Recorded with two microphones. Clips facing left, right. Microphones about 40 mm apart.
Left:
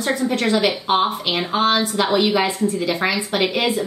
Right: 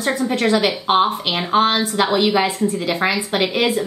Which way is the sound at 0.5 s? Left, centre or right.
Right.